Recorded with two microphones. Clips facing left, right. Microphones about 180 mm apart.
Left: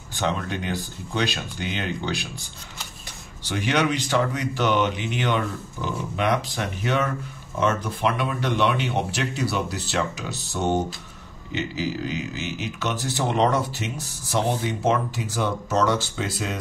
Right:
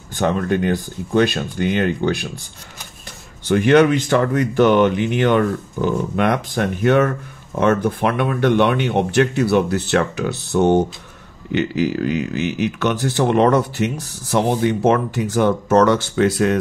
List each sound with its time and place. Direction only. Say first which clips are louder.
0.1 s speech: right 8 dB; 50° right (ahead or behind)
3.4 s speech: right 10 dB; 50° right (ahead or behind)